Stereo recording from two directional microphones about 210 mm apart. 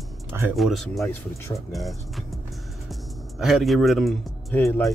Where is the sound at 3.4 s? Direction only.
Centre (ahead or behind).